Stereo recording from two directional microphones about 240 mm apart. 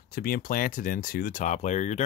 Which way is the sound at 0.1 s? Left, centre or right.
Left.